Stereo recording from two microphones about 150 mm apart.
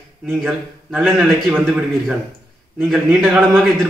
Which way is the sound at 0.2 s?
5° right (ahead or behind).